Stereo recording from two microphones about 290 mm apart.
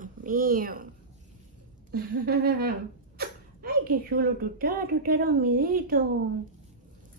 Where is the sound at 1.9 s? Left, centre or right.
Right.